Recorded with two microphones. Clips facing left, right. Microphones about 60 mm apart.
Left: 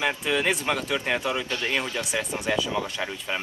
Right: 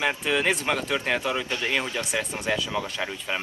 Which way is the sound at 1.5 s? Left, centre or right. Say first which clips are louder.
Even; right.